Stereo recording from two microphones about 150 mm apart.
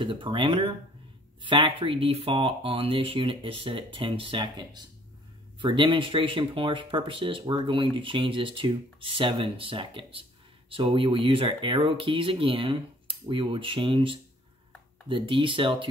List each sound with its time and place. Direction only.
0.0 s speech: 35° right (ahead or behind)